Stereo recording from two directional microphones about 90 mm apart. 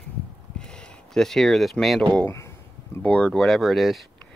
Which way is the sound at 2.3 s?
30° left (ahead or behind).